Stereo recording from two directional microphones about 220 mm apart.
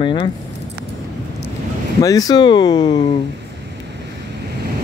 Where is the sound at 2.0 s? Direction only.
15° left (ahead or behind).